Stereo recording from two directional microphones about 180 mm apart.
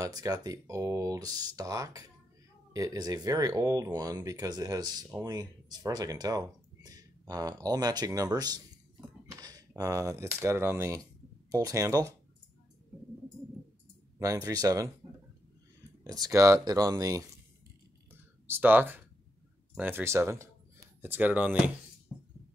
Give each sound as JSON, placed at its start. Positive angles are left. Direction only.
{"t": 0.0, "sound": "speech", "side_deg": -20}
{"t": 14.1, "sound": "speech", "side_deg": -20}
{"t": 16.0, "sound": "speech", "side_deg": -20}
{"t": 18.5, "sound": "speech", "side_deg": -10}